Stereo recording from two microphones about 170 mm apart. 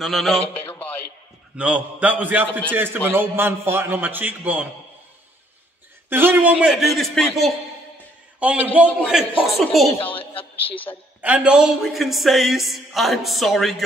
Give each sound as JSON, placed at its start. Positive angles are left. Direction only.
{"t": 0.0, "sound": "speech", "side_deg": 0}
{"t": 1.6, "sound": "a man's voice", "side_deg": -10}
{"t": 6.0, "sound": "a man's voice", "side_deg": -10}
{"t": 9.2, "sound": "speech", "side_deg": 30}
{"t": 9.5, "sound": "speech", "side_deg": 0}
{"t": 10.3, "sound": "a woman's voice", "side_deg": 30}
{"t": 11.1, "sound": "speech", "side_deg": -10}